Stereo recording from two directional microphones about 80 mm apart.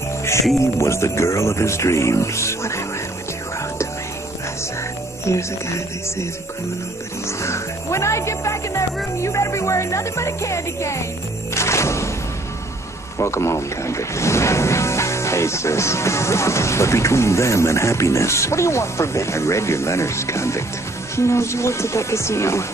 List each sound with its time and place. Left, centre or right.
0.6 s speech: left
5.2 s speech: left
7.2 s speech: left
11.5 s music: left
13.2 s speech: left